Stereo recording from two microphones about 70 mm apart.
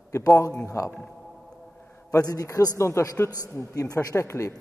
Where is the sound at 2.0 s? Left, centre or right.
Left.